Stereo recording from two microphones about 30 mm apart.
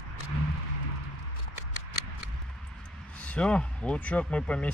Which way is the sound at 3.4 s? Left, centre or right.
Left.